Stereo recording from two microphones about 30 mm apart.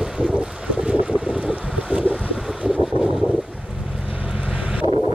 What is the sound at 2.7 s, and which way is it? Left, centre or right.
Wind noise, centre.